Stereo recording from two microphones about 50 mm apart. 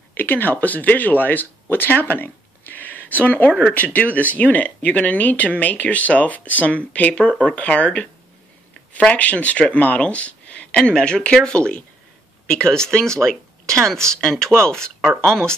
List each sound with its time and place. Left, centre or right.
0.1 s speech: left
3.4 s speech: centre
3.7 s speech: left
9.1 s speech: left
10.8 s speech: centre